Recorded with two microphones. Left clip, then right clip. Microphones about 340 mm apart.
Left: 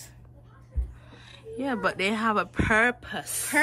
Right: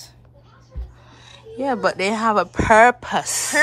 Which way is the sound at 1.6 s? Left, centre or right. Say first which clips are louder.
Right 7 dB; centre.